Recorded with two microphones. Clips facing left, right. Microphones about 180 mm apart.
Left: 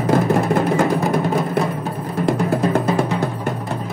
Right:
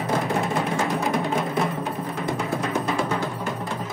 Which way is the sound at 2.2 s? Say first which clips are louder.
Left 10 dB; 75° left (ahead or behind).